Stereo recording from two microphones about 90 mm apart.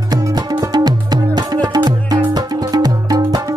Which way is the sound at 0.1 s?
45° right (ahead or behind).